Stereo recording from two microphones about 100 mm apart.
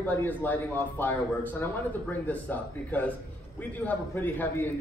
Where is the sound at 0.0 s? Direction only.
20° left (ahead or behind).